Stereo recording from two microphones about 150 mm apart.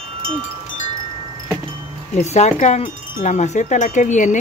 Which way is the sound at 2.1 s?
50° left (ahead or behind).